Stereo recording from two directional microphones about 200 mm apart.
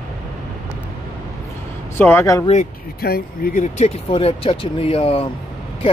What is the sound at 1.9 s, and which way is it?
Speech, 10° left (ahead or behind).